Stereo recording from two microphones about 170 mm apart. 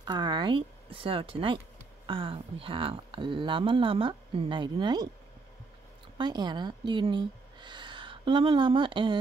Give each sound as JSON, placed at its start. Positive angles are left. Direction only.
{"t": 0.0, "sound": "speech", "side_deg": -25}
{"t": 6.1, "sound": "speech", "side_deg": -25}